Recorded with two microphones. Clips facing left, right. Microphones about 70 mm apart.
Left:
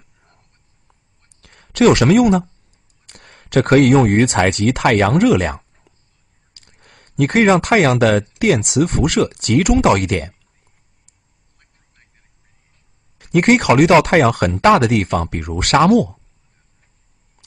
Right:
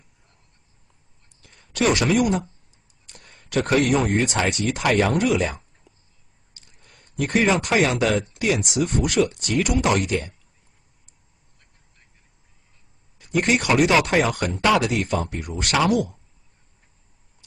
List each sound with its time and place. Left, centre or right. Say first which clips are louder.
1.4 s a woman's voice: left 9 dB; left
13.2 s speech: left 8 dB; left